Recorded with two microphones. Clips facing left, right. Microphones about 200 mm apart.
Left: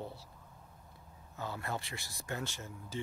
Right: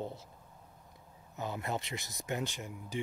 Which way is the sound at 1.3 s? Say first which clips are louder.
Right 3 dB; 20° right (ahead or behind).